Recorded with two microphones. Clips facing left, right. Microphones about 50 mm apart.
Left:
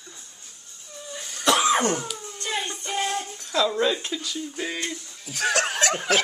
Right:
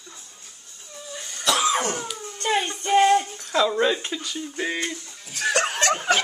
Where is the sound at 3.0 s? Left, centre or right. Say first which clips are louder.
Right 10 dB; centre.